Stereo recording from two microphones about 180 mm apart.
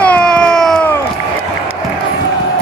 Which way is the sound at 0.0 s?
5° left (ahead or behind).